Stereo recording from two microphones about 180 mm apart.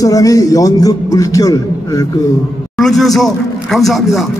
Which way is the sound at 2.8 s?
Centre (ahead or behind).